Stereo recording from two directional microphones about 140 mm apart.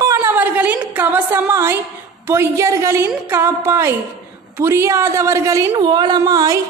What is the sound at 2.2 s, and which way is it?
A woman's voice, 20° right (ahead or behind).